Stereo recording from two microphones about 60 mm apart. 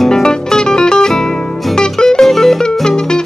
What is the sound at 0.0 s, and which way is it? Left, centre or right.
Music, centre.